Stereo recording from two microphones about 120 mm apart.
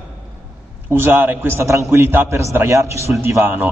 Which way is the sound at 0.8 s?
20° right (ahead or behind).